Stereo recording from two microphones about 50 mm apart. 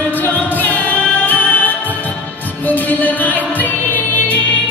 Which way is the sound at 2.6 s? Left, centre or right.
Left.